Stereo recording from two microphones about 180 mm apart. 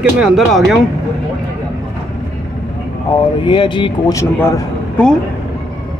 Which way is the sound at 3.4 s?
25° left (ahead or behind).